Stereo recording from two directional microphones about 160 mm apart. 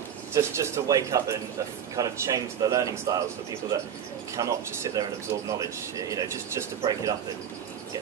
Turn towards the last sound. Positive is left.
turn(degrees=-20)  # may be behind; listen again after turning